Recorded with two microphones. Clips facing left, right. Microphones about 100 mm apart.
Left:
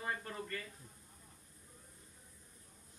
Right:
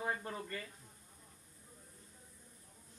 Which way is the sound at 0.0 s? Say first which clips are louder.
Right 2 dB; 15° right (ahead or behind).